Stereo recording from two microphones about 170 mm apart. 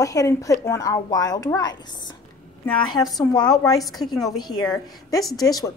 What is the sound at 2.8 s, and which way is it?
A woman's voice, 25° left (ahead or behind).